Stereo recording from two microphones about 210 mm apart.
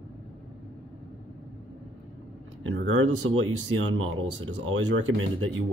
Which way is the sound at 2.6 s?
65° right (ahead or behind).